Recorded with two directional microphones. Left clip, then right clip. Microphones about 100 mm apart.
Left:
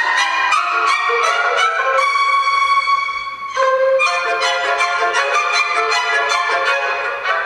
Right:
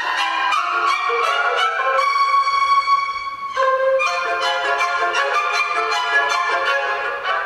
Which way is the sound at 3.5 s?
20° left (ahead or behind).